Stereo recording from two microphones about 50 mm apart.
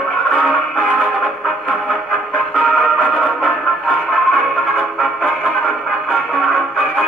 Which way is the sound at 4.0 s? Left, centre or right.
Centre.